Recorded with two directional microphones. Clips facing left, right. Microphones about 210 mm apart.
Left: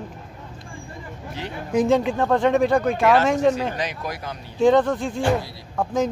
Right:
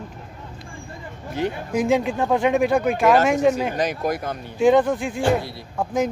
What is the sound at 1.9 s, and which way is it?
Speech, 10° right (ahead or behind).